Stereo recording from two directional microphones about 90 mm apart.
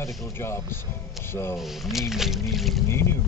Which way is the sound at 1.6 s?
5° right (ahead or behind).